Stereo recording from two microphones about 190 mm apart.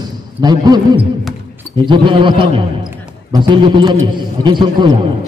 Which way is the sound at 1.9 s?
25° right (ahead or behind).